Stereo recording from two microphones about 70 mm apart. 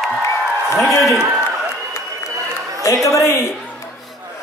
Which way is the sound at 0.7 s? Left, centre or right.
Centre.